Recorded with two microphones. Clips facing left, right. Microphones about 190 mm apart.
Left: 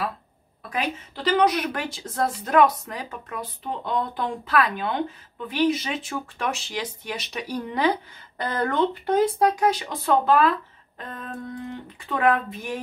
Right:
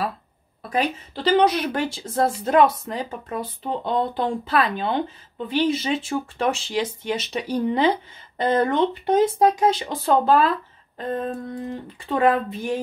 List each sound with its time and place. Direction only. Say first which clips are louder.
0.6 s speech: right 4 dB; 35° right (ahead or behind)
11.6 s speech: right 4 dB; 35° right (ahead or behind)